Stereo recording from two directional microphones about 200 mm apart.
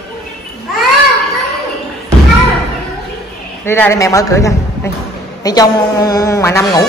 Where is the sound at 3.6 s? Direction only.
10° left (ahead or behind).